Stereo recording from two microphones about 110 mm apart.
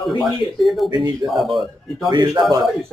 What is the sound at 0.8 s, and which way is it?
Speech, 40° right (ahead or behind).